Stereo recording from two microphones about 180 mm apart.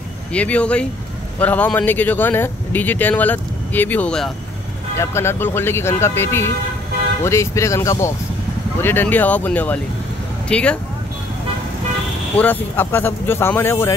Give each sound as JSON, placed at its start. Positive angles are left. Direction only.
{"t": 0.3, "sound": "speech", "side_deg": 5}
{"t": 12.4, "sound": "speech", "side_deg": 10}